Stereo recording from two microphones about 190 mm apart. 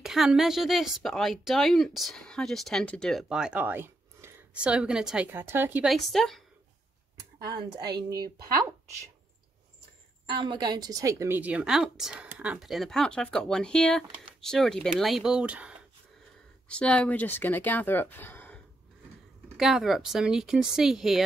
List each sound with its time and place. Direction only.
0.0 s speech: centre (ahead or behind)
7.5 s a woman's voice: 20° right (ahead or behind)
10.2 s a woman's voice: 25° right (ahead or behind); by 15.8 s 5° right (ahead or behind)
16.6 s speech: 5° left (ahead or behind)
19.5 s speech: centre (ahead or behind)